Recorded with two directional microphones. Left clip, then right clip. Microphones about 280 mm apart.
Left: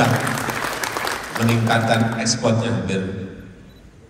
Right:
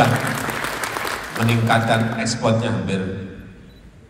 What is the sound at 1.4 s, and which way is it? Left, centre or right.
A man's voice, centre.